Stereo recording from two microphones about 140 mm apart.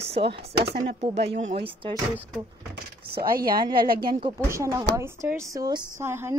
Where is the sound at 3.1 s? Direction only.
90° right.